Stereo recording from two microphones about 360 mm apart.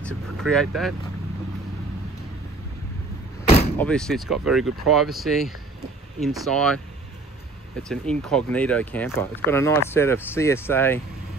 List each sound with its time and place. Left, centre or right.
0.0 s vehicle: centre
3.4 s door: centre
3.7 s speech: centre
7.9 s speech: centre